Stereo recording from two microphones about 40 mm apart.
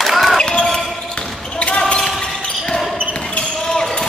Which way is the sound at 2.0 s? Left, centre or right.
Centre.